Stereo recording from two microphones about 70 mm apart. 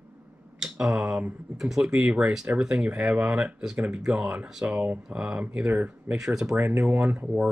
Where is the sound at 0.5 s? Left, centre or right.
Centre.